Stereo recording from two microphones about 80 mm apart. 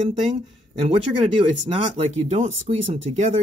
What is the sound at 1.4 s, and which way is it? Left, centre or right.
Speech, right.